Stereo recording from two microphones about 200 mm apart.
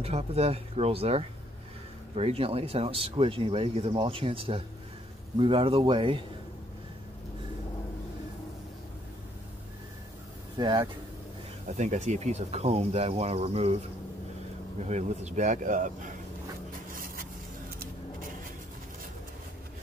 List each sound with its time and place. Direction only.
0.0 s speech: 30° right (ahead or behind)
10.6 s speech: 20° right (ahead or behind)
11.7 s speech: 35° right (ahead or behind)
14.9 s speech: 35° right (ahead or behind)
16.9 s vehicle: 45° right (ahead or behind)